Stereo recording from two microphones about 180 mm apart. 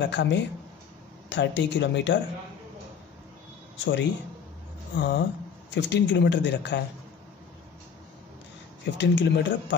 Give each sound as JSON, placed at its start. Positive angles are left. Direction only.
{"t": 0.0, "sound": "speech", "side_deg": 75}
{"t": 3.7, "sound": "speech", "side_deg": 90}
{"t": 4.9, "sound": "speech", "side_deg": 75}
{"t": 8.9, "sound": "speech", "side_deg": 80}